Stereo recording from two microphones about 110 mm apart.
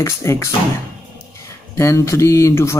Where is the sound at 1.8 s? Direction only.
25° left (ahead or behind).